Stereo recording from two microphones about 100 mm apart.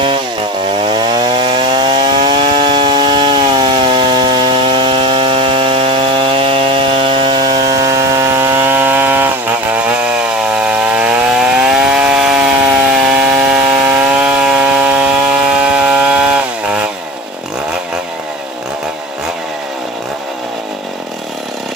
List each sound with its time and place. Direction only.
0.8 s chainsaw: 50° right (ahead or behind); by 12.4 s 5° right (ahead or behind)
13.5 s chainsaw: 10° right (ahead or behind)